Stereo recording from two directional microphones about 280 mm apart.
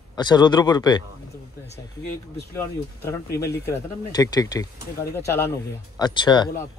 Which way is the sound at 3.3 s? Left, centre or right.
Centre.